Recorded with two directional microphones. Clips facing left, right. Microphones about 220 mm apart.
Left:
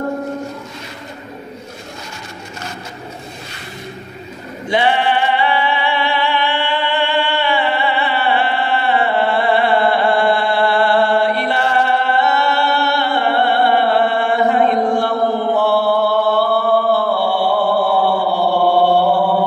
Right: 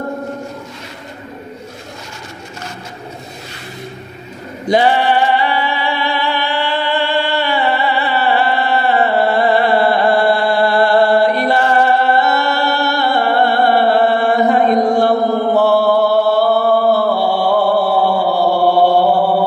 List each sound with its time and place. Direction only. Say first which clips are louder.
4.6 s music: right 3 dB; 40° right (ahead or behind)